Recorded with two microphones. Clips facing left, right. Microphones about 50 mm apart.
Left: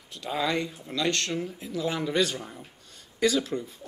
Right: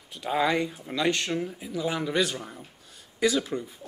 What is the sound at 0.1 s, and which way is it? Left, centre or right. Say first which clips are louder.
A man's voice: right 3 dB; centre.